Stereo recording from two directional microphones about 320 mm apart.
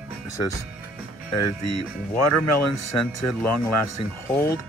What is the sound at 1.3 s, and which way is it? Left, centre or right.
Speech, left.